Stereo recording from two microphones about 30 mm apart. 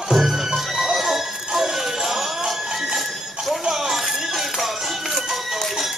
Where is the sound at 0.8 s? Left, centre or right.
Centre.